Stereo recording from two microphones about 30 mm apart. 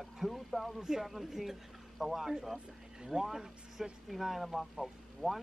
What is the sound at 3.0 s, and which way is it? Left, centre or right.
Speech, right.